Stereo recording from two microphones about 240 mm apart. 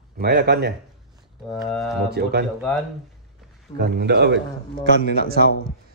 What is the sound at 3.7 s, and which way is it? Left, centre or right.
A man's voice, right.